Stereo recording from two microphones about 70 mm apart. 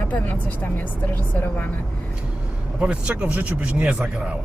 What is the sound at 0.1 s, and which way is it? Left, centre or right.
Speech, left.